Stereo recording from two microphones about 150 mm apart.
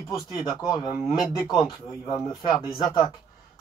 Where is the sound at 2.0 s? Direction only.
25° left (ahead or behind).